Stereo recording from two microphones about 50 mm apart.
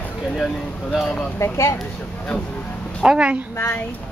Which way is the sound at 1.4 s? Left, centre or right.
Left.